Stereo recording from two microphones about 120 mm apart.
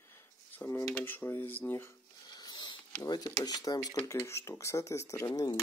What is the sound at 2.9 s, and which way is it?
Speech, 30° left (ahead or behind).